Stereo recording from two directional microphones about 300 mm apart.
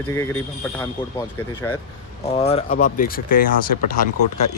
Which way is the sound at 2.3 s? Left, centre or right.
Centre.